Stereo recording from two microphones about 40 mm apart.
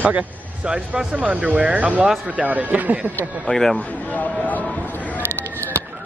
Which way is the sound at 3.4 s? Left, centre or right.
Centre.